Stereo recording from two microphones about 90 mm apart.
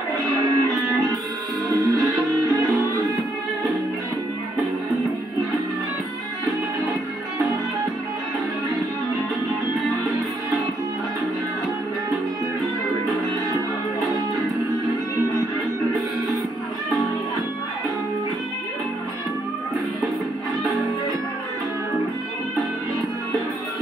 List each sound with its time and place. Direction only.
0.4 s music: 45° right (ahead or behind)
14.1 s music: 45° right (ahead or behind)